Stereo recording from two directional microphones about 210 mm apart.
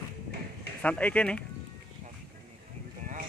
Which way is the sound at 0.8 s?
5° left (ahead or behind).